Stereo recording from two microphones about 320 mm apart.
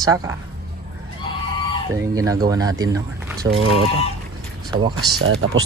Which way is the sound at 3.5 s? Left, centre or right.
Right.